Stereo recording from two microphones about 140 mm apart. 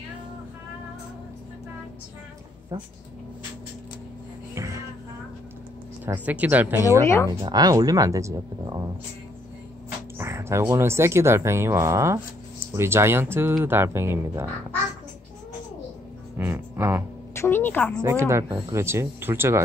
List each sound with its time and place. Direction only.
2.7 s speech: 20° right (ahead or behind)
4.6 s music: 20° right (ahead or behind)
6.0 s speech: 10° right (ahead or behind)
7.4 s speech: 30° right (ahead or behind)
10.1 s speech: 20° right (ahead or behind)
16.3 s speech: 15° right (ahead or behind)
17.3 s a woman's voice: 15° left (ahead or behind)
18.0 s speech: 20° right (ahead or behind)